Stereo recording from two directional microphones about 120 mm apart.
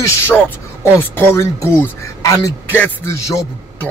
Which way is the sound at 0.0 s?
20° left (ahead or behind).